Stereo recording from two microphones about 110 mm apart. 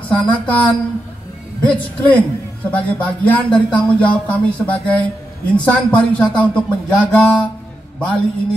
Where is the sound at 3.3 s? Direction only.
10° left (ahead or behind).